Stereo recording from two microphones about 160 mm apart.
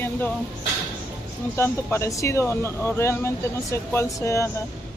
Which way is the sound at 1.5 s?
15° left (ahead or behind).